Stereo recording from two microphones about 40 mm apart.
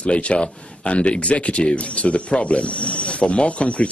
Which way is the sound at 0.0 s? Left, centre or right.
Left.